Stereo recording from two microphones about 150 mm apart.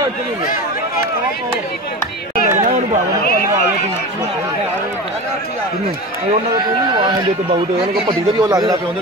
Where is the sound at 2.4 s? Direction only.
55° right (ahead or behind).